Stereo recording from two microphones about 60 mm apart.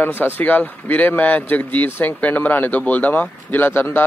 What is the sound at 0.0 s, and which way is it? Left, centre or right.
Speech, left.